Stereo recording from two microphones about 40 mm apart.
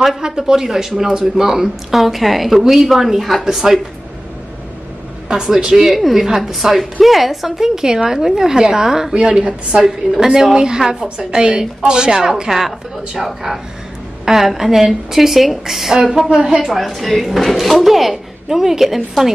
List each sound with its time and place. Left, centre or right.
0.2 s speech: centre
5.3 s speech: centre
9.1 s a woman's voice: right
12.2 s speech: centre
16.6 s speech: centre